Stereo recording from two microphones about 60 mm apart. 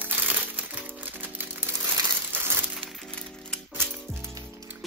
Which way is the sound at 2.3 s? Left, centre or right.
Right.